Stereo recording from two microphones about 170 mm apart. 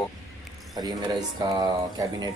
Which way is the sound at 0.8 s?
25° right (ahead or behind).